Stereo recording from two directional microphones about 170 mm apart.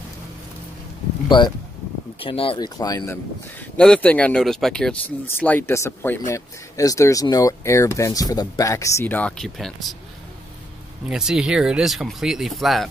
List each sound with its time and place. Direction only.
1.3 s speech: 25° left (ahead or behind)
3.5 s speech: 5° left (ahead or behind)
11.1 s speech: 5° right (ahead or behind)